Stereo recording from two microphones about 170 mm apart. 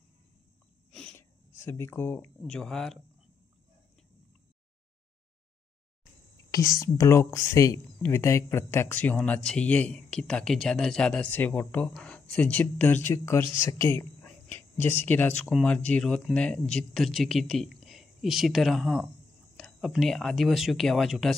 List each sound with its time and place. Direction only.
0.9 s a sound: 5° left (ahead or behind)
1.5 s speech: 15° left (ahead or behind)
6.8 s speech: 15° left (ahead or behind); by 21.4 s centre (ahead or behind)